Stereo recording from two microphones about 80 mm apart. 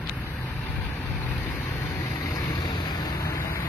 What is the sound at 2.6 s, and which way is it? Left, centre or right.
Vehicle, left.